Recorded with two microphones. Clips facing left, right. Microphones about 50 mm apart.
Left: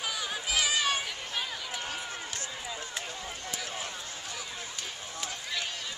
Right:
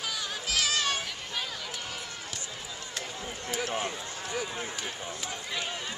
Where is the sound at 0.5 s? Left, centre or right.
Centre.